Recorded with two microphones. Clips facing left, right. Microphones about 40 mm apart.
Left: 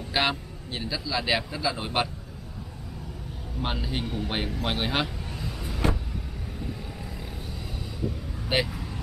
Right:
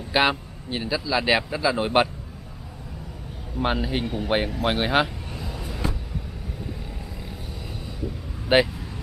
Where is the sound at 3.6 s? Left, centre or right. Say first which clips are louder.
Right 6 dB; centre.